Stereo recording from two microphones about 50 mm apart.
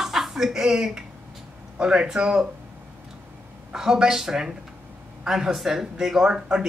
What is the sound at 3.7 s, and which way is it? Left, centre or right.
A woman's voice, centre.